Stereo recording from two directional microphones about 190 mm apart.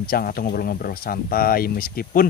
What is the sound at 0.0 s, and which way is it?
Speech, 50° left (ahead or behind).